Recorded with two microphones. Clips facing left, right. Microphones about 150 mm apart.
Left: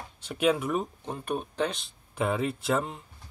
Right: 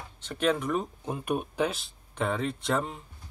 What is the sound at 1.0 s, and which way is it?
Speech, 10° right (ahead or behind).